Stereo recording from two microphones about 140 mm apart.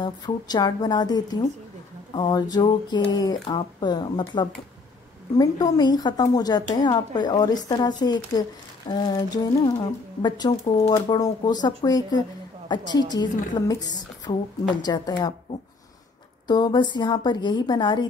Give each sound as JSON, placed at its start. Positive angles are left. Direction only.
{"t": 0.0, "sound": "a woman's voice", "side_deg": 30}
{"t": 16.4, "sound": "a woman's voice", "side_deg": 30}